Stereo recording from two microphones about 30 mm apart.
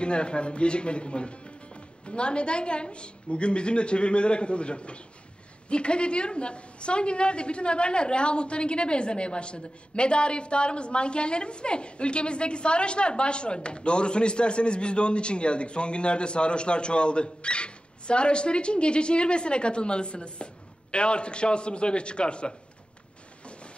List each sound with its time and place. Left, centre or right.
0.0 s a woman's voice: left
23.4 s train: left